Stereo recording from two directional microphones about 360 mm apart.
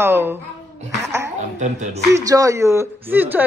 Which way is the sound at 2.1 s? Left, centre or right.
Centre.